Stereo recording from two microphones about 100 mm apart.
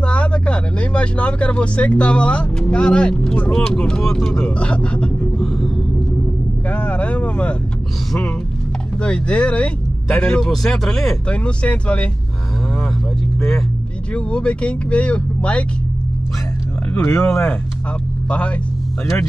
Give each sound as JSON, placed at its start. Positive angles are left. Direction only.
{"t": 0.0, "sound": "speech", "side_deg": 10}
{"t": 6.7, "sound": "speech", "side_deg": 15}
{"t": 9.0, "sound": "speech", "side_deg": 10}
{"t": 14.1, "sound": "speech", "side_deg": 10}
{"t": 16.9, "sound": "speech", "side_deg": 20}